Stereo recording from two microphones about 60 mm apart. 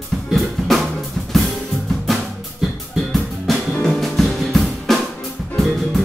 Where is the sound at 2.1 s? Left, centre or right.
Centre.